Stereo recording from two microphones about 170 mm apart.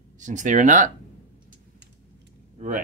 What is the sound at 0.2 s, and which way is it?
Speech, 45° right (ahead or behind).